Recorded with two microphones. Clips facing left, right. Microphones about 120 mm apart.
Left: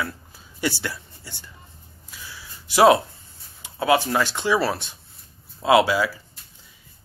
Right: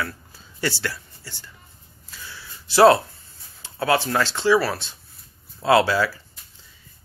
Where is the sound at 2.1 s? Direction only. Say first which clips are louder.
Right 1 dB; 15° left (ahead or behind).